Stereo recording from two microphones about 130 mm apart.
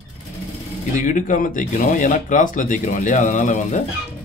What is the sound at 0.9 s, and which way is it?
Speech, 90° left.